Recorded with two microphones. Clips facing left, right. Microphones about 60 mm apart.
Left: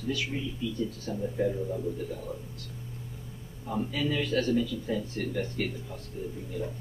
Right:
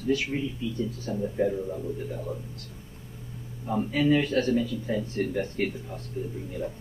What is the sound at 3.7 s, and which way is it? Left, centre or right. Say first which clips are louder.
A man's voice: right 6 dB; right.